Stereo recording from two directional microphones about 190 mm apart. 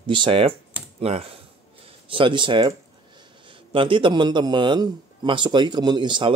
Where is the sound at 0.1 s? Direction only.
25° right (ahead or behind).